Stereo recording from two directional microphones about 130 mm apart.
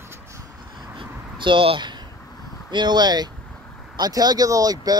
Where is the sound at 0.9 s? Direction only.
40° right (ahead or behind).